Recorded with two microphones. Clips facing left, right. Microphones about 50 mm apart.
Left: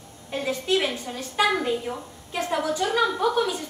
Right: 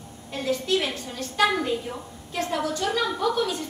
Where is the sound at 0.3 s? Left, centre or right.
Left.